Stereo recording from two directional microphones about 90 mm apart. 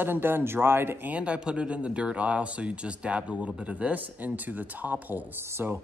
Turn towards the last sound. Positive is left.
turn(degrees=-20)  # may be behind; listen again after turning